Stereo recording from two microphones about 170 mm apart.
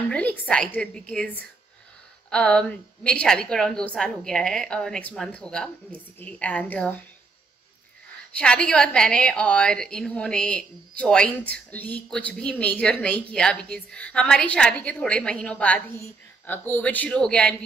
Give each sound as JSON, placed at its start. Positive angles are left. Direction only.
{"t": 0.1, "sound": "a woman's voice", "side_deg": 5}
{"t": 8.3, "sound": "a woman's voice", "side_deg": 5}